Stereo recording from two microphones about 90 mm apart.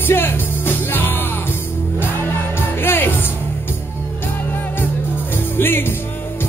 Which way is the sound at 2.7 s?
25° left (ahead or behind).